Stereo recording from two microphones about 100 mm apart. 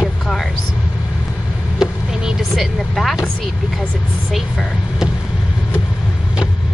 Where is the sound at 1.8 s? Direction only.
5° right (ahead or behind).